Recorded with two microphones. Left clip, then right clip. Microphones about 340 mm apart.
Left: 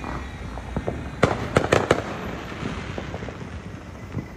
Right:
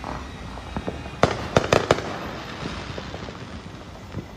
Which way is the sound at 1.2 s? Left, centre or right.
Right.